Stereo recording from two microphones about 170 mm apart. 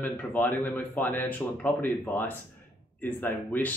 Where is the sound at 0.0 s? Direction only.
10° left (ahead or behind).